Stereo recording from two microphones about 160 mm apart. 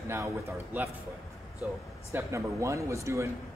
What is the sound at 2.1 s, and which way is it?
A man's voice, 20° right (ahead or behind).